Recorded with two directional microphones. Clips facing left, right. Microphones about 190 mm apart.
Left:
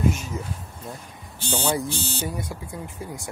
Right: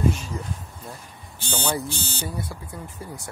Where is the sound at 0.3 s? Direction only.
5° left (ahead or behind).